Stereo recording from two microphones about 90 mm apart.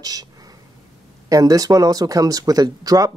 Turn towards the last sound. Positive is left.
turn(degrees=-45)  # may be behind; listen again after turning